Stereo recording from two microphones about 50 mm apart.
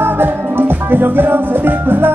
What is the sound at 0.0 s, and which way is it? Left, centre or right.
Music, right.